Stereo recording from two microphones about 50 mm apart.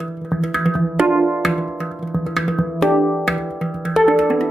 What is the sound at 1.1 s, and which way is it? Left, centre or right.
Music, right.